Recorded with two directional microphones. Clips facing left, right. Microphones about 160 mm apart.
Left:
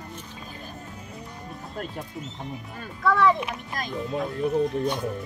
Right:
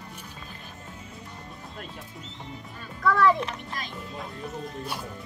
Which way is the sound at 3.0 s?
Centre (ahead or behind).